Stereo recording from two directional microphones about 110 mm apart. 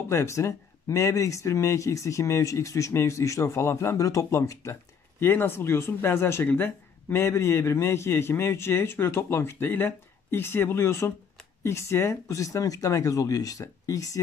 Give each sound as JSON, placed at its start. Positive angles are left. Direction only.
{"t": 0.1, "sound": "speech", "side_deg": 25}